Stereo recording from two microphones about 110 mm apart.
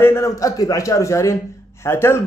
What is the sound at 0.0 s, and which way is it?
Speech, 25° left (ahead or behind).